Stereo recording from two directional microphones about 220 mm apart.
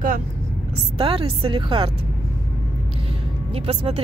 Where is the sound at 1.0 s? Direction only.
25° right (ahead or behind).